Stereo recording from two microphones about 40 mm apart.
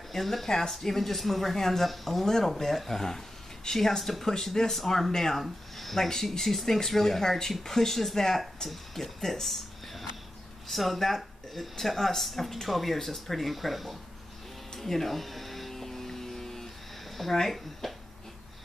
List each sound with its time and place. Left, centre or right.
0.1 s speech: centre
14.8 s electric shaver: centre
17.2 s speech: centre